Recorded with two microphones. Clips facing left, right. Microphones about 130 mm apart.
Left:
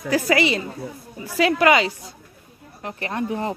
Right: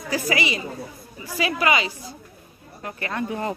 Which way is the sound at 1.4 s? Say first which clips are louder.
Left 5 dB; 65° left (ahead or behind).